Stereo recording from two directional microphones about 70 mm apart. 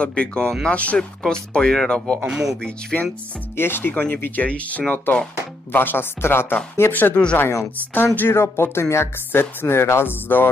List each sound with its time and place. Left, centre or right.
0.0 s speech: centre
2.2 s speech: centre
2.6 s speech: centre
3.5 s speech: left